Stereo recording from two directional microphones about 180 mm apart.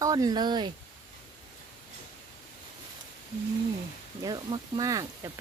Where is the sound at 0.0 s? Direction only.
20° right (ahead or behind).